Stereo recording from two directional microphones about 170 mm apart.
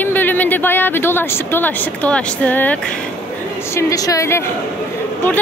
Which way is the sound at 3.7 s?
20° left (ahead or behind).